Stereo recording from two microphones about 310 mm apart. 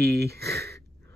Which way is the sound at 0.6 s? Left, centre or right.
Right.